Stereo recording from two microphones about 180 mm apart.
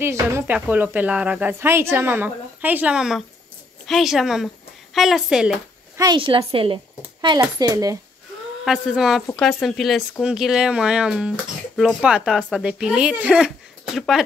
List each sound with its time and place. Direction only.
0.0 s a woman's voice: 15° right (ahead or behind)
5.9 s a woman's voice: 25° right (ahead or behind)
8.6 s speech: 5° right (ahead or behind)